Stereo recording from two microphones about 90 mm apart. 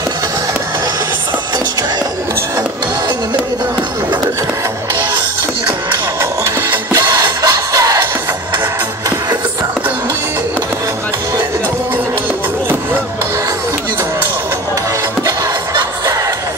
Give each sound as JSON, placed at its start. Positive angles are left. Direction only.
{"t": 7.2, "sound": "music", "side_deg": -45}